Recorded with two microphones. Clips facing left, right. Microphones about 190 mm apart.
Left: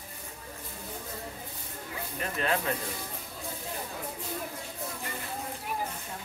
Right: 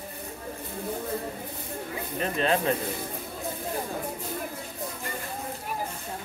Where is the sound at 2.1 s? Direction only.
25° right (ahead or behind).